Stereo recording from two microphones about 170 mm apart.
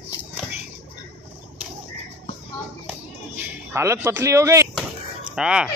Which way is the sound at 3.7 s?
15° right (ahead or behind).